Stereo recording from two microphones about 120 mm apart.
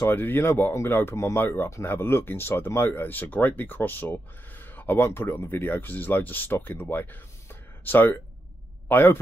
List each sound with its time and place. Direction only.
0.0 s a man's voice: 15° left (ahead or behind)